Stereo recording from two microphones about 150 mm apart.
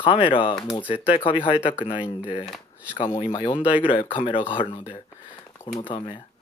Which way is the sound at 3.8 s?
35° left (ahead or behind).